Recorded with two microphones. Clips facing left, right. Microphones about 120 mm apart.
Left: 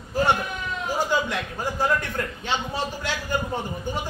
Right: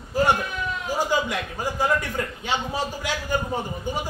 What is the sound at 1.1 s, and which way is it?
A man's voice, 10° right (ahead or behind).